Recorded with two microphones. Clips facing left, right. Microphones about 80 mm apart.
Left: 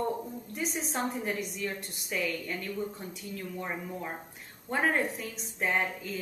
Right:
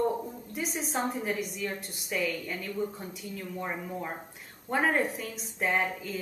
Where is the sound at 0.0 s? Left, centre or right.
Centre.